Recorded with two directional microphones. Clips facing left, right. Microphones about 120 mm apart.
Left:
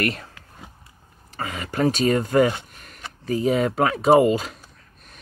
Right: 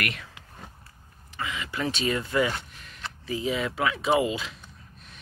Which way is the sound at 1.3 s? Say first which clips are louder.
Left 4 dB; 45° left (ahead or behind).